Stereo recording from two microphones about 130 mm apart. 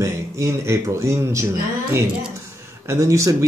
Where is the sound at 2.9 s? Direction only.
25° right (ahead or behind).